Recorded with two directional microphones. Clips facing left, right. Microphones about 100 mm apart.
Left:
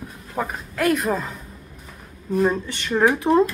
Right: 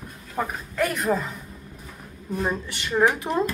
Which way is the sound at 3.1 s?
Centre (ahead or behind).